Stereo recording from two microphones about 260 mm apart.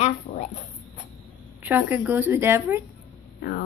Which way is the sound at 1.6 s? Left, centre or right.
Centre.